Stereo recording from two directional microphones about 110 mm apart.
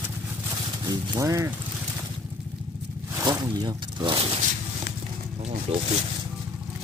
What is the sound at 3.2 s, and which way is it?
Speech, 40° right (ahead or behind).